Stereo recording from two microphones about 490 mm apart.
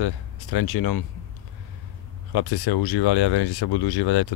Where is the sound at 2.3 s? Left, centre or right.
Left.